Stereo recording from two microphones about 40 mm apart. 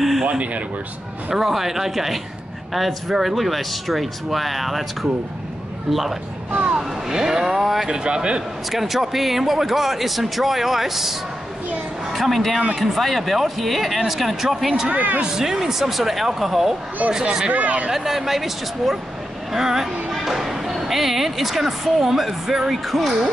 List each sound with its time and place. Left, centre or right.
0.4 s speech: right
1.3 s speech: centre
6.5 s speech: right
6.8 s speech: centre
8.6 s speech: centre
14.9 s speech: right
15.2 s speech: centre
17.5 s speech: right
17.9 s speech: centre